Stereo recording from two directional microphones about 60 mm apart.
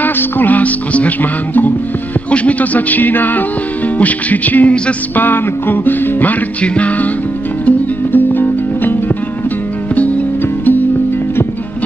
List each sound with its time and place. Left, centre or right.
0.0 s speech: left
5.2 s music: left
6.6 s speech: left
7.6 s music: left
9.9 s music: left